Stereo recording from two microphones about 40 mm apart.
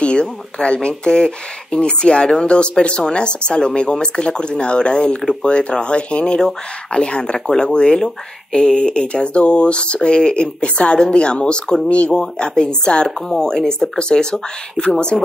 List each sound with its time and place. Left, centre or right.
0.0 s a woman's voice: left